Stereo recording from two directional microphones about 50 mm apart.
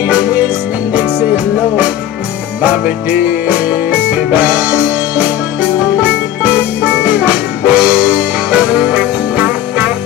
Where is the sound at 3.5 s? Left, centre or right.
Right.